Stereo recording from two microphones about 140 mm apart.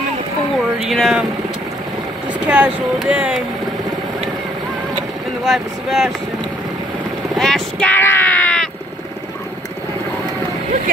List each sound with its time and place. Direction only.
0.8 s speech: centre (ahead or behind)
2.4 s speech: 10° right (ahead or behind)
5.4 s speech: centre (ahead or behind)
7.3 s vehicle: 5° left (ahead or behind)